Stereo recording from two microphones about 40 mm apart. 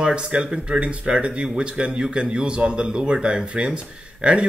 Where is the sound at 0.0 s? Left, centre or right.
Right.